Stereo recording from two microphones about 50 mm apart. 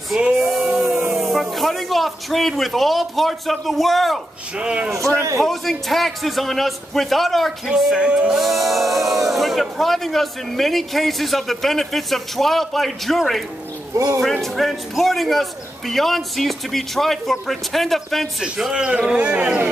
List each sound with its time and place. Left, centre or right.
0.4 s a sound: centre
1.1 s speech: centre
4.6 s speech: centre
5.4 s speech: centre
7.7 s speech: centre
8.3 s speech: centre
13.9 s speech: right
14.2 s speech: centre
18.7 s speech: centre